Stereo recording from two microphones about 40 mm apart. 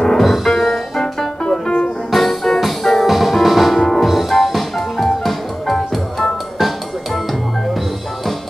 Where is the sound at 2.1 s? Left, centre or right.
Centre.